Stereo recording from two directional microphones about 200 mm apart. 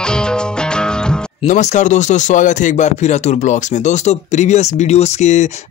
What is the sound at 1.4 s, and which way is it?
Speech, 35° left (ahead or behind).